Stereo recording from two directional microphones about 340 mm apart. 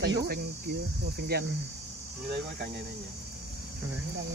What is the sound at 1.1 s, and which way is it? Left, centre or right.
Speech, right.